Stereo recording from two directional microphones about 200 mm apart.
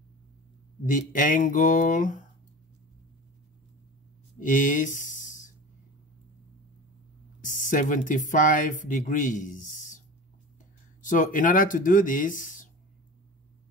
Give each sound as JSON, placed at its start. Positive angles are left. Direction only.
{"t": 0.8, "sound": "speech", "side_deg": 40}
{"t": 4.4, "sound": "a sound", "side_deg": 40}
{"t": 7.4, "sound": "speech", "side_deg": 40}
{"t": 11.0, "sound": "speech", "side_deg": 40}